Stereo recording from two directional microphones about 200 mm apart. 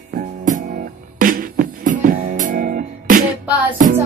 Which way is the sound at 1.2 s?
45° right (ahead or behind).